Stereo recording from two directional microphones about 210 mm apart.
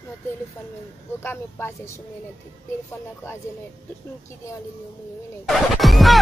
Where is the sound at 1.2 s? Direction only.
10° left (ahead or behind).